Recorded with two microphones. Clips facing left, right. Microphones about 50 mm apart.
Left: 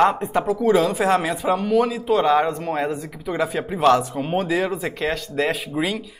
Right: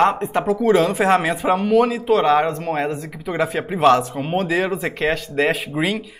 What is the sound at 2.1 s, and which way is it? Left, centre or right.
A man's voice, centre.